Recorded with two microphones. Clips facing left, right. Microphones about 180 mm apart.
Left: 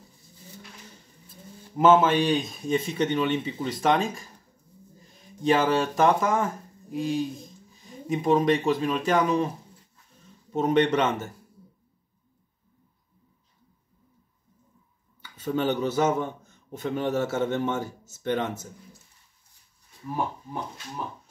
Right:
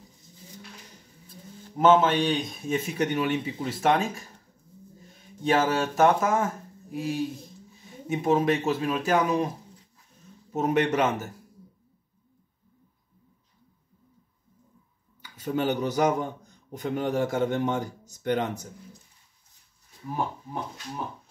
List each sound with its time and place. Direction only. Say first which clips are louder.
1.8 s a man's voice: left 1 dB; 5° left (ahead or behind); by 9.5 s 10° right (ahead or behind)
10.7 s a man's voice: left 2 dB; 10° right (ahead or behind)
15.3 s a man's voice: left 1 dB; 10° right (ahead or behind)